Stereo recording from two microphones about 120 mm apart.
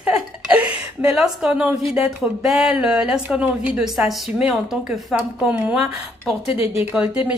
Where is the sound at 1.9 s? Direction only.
5° right (ahead or behind).